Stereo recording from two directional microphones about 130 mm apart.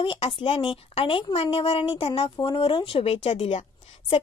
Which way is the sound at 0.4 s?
40° left (ahead or behind).